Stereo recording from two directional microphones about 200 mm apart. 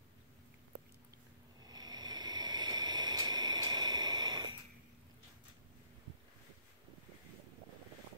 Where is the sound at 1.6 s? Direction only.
20° right (ahead or behind).